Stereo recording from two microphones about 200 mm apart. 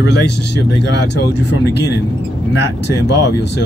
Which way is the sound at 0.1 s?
60° left (ahead or behind).